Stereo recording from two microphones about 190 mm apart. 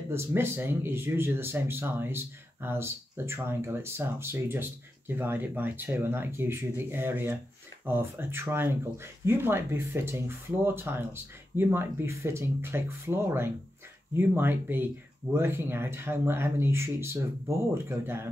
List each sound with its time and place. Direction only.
0.1 s speech: 10° right (ahead or behind)